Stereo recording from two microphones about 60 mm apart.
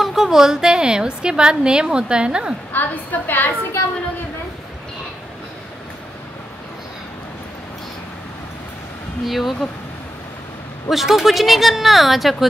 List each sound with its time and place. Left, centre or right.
0.0 s a woman's voice: centre
2.7 s a woman's voice: left
9.2 s speech: centre
10.9 s speech: centre